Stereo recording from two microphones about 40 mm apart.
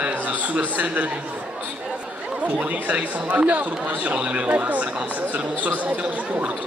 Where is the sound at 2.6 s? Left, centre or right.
Right.